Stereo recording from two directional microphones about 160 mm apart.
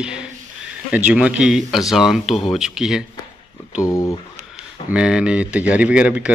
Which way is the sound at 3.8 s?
20° left (ahead or behind).